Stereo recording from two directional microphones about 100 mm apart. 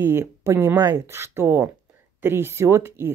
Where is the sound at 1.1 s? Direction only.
25° right (ahead or behind).